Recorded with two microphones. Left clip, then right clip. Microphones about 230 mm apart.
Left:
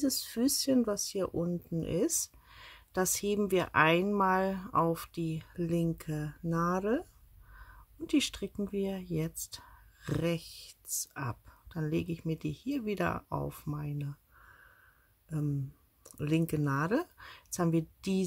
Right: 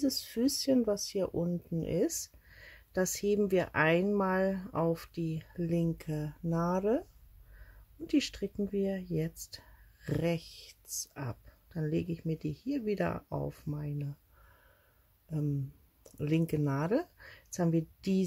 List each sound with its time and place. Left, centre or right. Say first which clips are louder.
0.0 s speech: even; centre
8.1 s speech: left 1 dB; centre
15.2 s speech: even; centre